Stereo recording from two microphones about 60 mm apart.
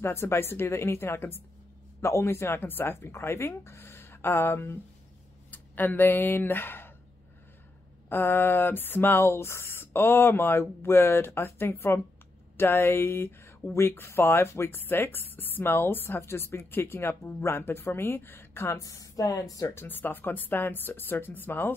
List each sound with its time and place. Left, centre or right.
0.0 s speech: left
5.5 s speech: left
8.1 s speech: left
18.7 s speech: left
19.7 s speech: left